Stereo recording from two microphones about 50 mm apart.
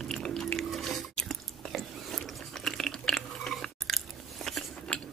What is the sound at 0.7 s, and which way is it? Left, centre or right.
Squish, centre.